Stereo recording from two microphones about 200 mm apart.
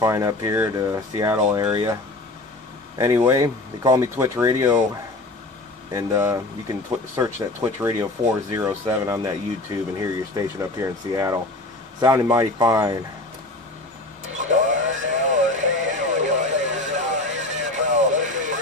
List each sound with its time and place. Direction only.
0.0 s speech: 15° right (ahead or behind)
3.3 s speech: 15° right (ahead or behind)
5.9 s speech: 15° right (ahead or behind)
14.3 s vehicle: 40° right (ahead or behind)
14.8 s a sound: 70° right (ahead or behind)
15.0 s radio: 35° right (ahead or behind)